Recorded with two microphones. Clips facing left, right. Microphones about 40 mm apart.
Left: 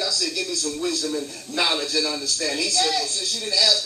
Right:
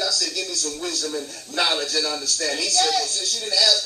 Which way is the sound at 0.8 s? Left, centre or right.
Centre.